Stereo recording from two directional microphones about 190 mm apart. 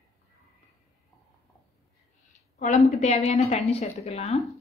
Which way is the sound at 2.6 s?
40° left (ahead or behind).